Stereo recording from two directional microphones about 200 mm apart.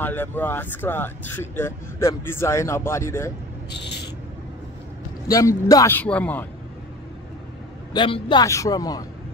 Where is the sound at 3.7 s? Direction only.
55° left (ahead or behind).